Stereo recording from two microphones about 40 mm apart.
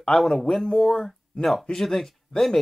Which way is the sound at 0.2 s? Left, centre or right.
Centre.